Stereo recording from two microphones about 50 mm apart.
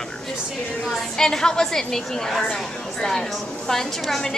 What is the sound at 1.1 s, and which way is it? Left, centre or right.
Speech, centre.